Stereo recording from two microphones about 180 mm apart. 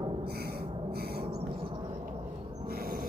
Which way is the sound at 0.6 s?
30° right (ahead or behind).